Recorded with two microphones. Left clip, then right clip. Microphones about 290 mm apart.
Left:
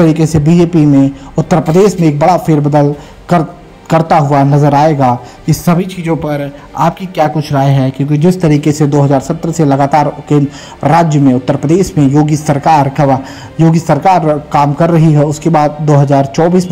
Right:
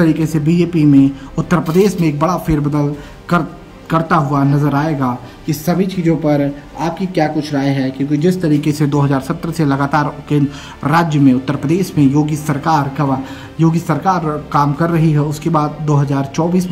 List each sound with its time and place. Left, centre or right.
0.0 s a man's voice: centre
2.1 s speech: centre
2.4 s a man's voice: centre
3.9 s a man's voice: centre
5.5 s speech: centre
8.5 s a man's voice: centre
10.2 s a man's voice: centre